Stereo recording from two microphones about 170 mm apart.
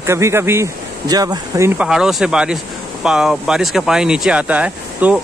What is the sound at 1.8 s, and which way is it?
Speech, 5° right (ahead or behind).